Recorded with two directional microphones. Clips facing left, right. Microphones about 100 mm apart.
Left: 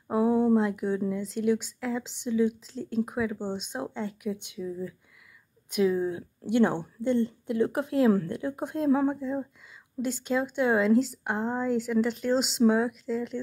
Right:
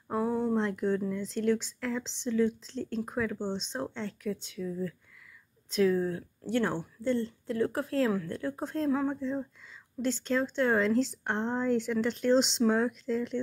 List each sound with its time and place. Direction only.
0.1 s a woman's voice: 15° left (ahead or behind)